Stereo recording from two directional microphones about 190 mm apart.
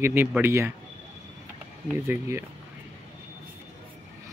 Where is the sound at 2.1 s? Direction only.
15° right (ahead or behind).